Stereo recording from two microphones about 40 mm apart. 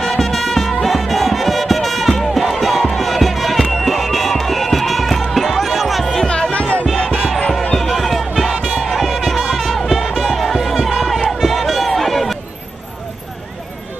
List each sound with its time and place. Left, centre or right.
0.0 s music: centre
6.2 s music: left
7.7 s music: centre
11.2 s run: centre